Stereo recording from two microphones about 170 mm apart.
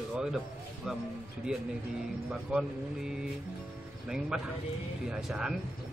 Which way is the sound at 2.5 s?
5° right (ahead or behind).